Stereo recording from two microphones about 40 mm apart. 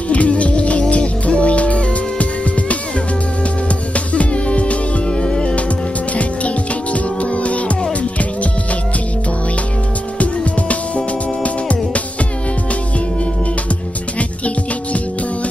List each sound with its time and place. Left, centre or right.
0.1 s music: left
5.1 s music: left
10.1 s music: left
14.1 s music: left